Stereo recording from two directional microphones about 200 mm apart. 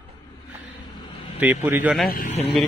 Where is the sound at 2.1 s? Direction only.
45° left (ahead or behind).